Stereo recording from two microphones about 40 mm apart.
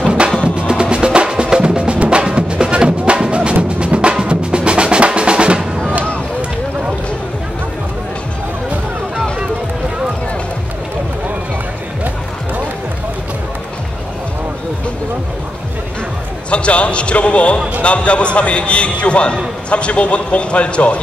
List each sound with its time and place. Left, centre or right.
0.6 s music: right
16.4 s a man's voice: left